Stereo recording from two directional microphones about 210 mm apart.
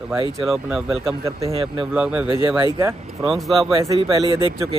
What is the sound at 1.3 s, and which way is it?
Speech, 30° right (ahead or behind).